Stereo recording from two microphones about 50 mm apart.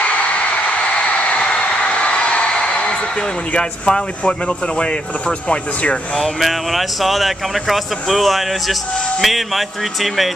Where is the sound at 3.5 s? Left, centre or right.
Centre.